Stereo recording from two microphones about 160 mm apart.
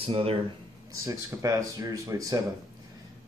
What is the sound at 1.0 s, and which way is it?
Speech, 20° right (ahead or behind).